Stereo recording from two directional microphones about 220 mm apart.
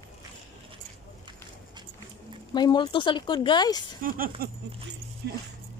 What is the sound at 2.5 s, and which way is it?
Speech, 20° left (ahead or behind).